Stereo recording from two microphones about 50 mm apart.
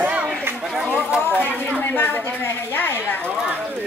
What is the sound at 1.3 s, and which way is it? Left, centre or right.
Speech, left.